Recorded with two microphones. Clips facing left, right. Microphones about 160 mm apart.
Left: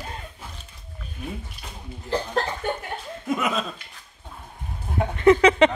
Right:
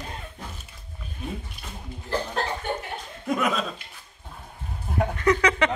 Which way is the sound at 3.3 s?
Centre (ahead or behind).